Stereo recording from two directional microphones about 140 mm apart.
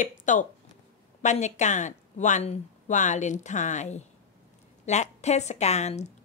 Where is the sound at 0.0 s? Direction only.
65° left (ahead or behind).